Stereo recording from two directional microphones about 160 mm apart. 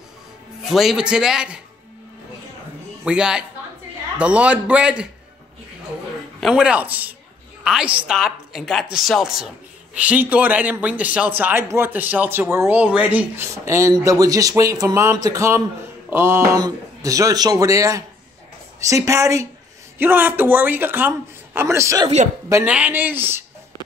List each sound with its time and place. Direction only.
0.6 s a woman's voice: centre (ahead or behind)
3.0 s a woman's voice: 5° right (ahead or behind)
6.4 s a man's voice: 5° right (ahead or behind); by 22.1 s 20° right (ahead or behind)
22.5 s a man's voice: 10° right (ahead or behind)